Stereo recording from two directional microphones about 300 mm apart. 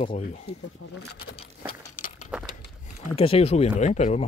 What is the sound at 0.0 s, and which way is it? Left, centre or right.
Speech, left.